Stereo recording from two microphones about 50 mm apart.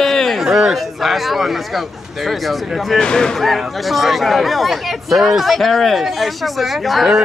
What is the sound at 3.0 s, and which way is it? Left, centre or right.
Speech, centre.